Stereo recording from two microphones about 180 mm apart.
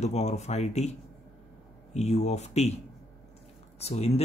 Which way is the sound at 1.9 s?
40° left (ahead or behind).